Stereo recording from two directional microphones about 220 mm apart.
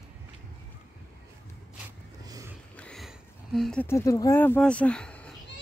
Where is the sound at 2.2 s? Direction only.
15° right (ahead or behind).